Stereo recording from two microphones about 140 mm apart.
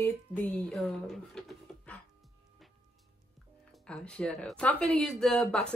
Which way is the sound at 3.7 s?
5° left (ahead or behind).